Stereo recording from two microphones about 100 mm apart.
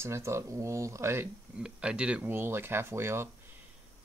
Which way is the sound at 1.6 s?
10° right (ahead or behind).